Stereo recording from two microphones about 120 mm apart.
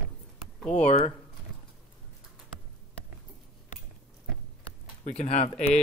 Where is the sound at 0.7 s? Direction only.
60° left (ahead or behind).